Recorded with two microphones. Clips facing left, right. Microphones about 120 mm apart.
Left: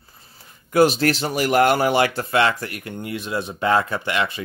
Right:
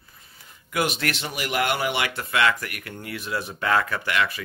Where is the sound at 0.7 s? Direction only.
35° left (ahead or behind).